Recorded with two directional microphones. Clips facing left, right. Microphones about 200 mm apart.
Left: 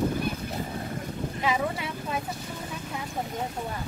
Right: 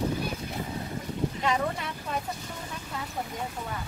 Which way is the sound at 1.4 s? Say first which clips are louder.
Left 3 dB; 5° left (ahead or behind).